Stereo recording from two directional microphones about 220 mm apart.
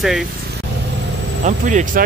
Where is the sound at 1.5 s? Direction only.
35° right (ahead or behind).